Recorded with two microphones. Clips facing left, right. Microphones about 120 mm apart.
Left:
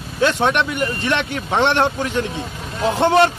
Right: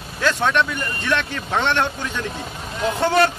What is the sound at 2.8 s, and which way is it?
Speech, 25° left (ahead or behind).